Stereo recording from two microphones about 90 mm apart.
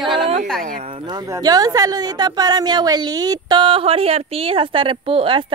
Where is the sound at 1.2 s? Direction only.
40° right (ahead or behind).